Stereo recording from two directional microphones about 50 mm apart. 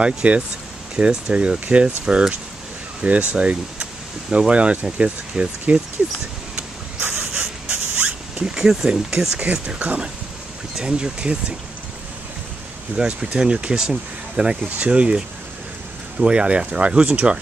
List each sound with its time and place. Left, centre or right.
0.0 s speech: right
7.1 s a sound: centre
8.5 s speech: centre
9.4 s speech: right
12.9 s speech: centre